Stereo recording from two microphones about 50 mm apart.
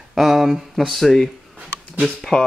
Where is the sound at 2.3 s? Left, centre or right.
Centre.